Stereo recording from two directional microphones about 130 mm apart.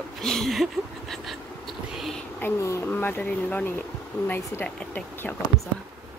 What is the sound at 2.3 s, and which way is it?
Speech, 20° left (ahead or behind).